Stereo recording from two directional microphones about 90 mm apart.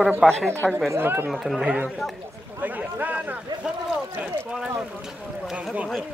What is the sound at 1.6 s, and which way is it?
Speech, 15° right (ahead or behind).